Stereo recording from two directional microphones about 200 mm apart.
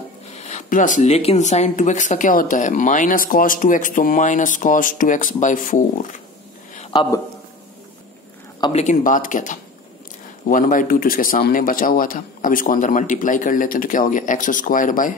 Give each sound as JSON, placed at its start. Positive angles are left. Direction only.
{"t": 0.4, "sound": "speech", "side_deg": 35}
{"t": 6.8, "sound": "a sound", "side_deg": 25}
{"t": 8.7, "sound": "a man's voice", "side_deg": 40}